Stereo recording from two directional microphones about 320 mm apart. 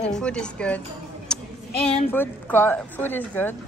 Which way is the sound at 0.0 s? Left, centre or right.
Centre.